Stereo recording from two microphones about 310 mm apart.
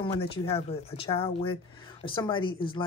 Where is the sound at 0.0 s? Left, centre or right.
Centre.